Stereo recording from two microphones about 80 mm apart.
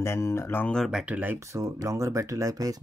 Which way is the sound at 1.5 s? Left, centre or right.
Right.